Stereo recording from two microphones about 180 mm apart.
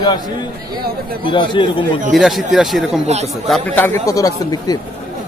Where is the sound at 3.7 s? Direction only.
15° left (ahead or behind).